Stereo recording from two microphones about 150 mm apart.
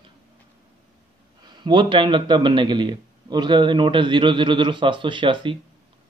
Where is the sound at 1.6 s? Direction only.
35° right (ahead or behind).